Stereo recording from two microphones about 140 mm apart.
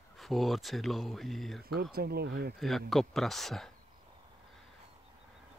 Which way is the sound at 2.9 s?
Centre (ahead or behind).